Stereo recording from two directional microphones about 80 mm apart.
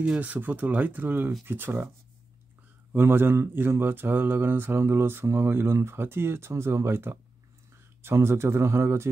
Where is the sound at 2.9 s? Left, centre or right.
Right.